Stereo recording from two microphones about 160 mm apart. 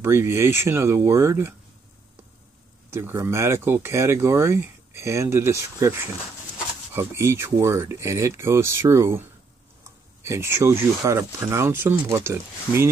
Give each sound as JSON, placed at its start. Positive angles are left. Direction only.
{"t": 0.0, "sound": "speech", "side_deg": -15}
{"t": 2.9, "sound": "speech", "side_deg": -15}
{"t": 10.2, "sound": "speech", "side_deg": -15}